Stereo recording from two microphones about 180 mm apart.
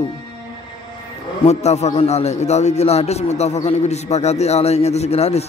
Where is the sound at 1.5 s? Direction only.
40° left (ahead or behind).